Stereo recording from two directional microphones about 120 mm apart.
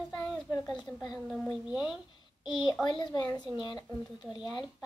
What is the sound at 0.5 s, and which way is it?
Speech, 30° left (ahead or behind).